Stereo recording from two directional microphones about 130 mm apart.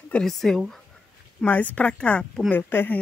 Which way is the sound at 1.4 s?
15° left (ahead or behind).